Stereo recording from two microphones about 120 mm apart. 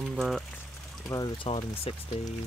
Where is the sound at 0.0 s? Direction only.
5° right (ahead or behind).